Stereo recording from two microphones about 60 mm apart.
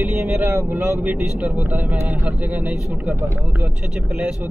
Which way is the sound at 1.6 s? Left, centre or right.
Right.